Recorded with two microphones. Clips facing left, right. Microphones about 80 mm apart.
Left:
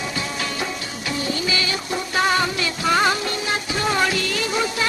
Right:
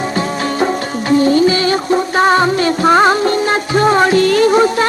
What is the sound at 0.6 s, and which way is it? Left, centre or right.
Music, right.